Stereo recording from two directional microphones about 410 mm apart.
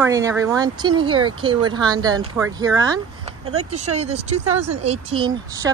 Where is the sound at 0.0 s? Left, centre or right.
Centre.